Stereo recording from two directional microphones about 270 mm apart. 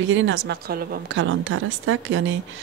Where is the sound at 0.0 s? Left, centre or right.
Right.